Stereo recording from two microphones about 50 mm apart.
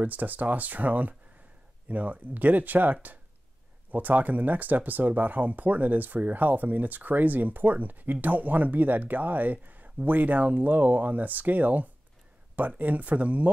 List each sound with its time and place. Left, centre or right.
0.0 s speech: right